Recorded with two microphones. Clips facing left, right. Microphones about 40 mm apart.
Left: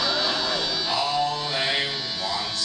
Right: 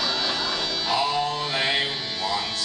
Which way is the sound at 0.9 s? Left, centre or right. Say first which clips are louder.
Right 1 dB; centre.